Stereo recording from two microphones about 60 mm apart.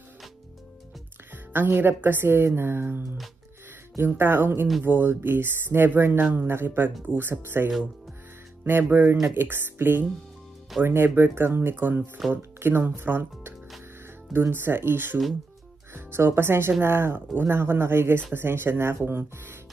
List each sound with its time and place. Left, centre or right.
1.3 s speech: right
4.0 s speech: right
8.8 s speech: right